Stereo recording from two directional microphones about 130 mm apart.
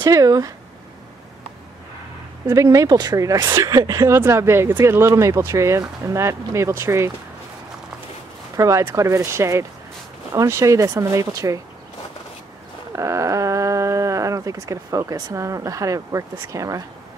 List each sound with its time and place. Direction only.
0.0 s speech: 25° right (ahead or behind)
2.4 s speech: 25° right (ahead or behind)
8.5 s speech: 25° right (ahead or behind)
12.9 s speech: 25° right (ahead or behind)